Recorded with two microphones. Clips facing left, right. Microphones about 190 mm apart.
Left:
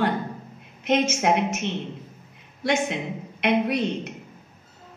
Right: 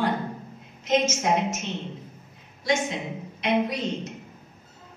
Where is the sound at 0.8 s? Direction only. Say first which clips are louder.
Left 2 dB; 65° left (ahead or behind).